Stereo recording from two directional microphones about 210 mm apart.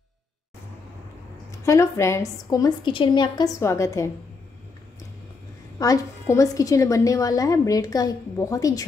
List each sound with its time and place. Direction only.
1.7 s a woman's voice: 15° left (ahead or behind)
5.8 s a woman's voice: 15° left (ahead or behind)